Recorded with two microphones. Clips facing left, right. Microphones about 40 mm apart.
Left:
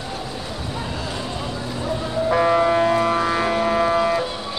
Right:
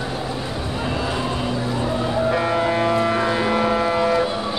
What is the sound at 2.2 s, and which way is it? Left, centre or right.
Music, centre.